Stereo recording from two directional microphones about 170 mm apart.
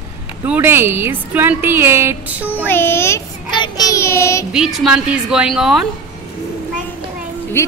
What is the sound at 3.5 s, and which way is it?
Child singing, 25° left (ahead or behind).